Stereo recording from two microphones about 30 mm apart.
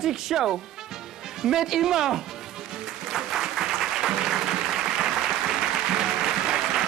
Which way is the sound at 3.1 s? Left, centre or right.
Centre.